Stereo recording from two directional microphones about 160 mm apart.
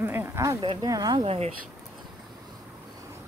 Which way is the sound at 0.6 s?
30° right (ahead or behind).